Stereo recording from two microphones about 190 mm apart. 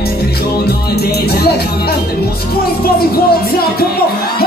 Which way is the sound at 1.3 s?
55° left (ahead or behind).